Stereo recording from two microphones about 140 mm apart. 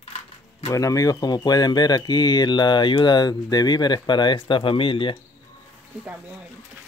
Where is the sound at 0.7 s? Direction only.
25° left (ahead or behind).